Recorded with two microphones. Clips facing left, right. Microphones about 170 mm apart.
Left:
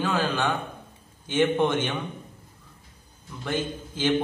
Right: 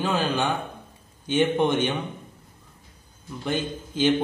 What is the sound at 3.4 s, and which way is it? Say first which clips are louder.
Speech: right 1 dB; 20° right (ahead or behind).